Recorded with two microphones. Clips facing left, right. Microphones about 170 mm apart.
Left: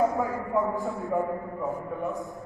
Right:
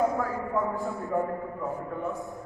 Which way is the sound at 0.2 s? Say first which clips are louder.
Left 2 dB; 20° left (ahead or behind).